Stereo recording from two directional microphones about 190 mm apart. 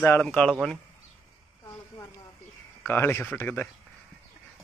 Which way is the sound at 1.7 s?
20° left (ahead or behind).